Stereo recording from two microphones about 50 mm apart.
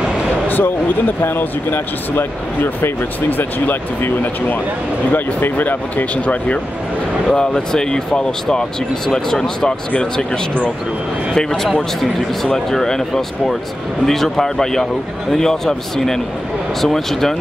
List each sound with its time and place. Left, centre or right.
0.5 s speech: left
7.2 s speech: centre